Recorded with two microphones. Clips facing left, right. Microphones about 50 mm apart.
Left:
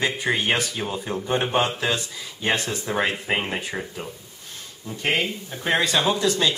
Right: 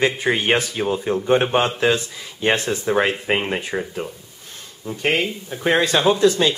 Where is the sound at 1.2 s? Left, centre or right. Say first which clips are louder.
Right 4 dB; right; by 3.8 s centre.